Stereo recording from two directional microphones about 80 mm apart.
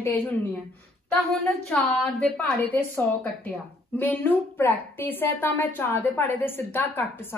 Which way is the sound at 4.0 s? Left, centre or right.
Left.